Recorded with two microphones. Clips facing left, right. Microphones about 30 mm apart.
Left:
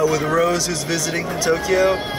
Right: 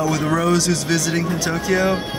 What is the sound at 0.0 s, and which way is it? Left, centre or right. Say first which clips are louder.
Speech: left 2 dB; centre.